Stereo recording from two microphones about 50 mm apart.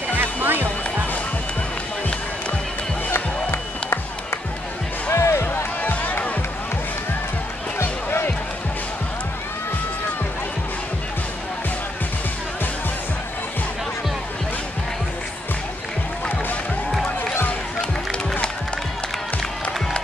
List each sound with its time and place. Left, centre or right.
0.2 s music: right
3.1 s music: left
5.1 s music: left
5.8 s music: left
7.8 s music: left